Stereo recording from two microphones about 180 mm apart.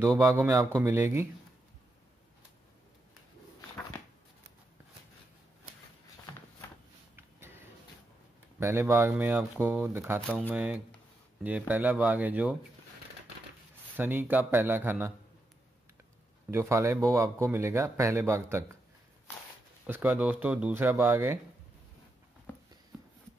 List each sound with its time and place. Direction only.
0.0 s speech: 20° right (ahead or behind)
7.2 s a sound: 15° right (ahead or behind)
8.5 s speech: 15° right (ahead or behind)
13.9 s speech: 10° right (ahead or behind)
16.4 s speech: 15° right (ahead or behind)
19.9 s speech: 10° right (ahead or behind)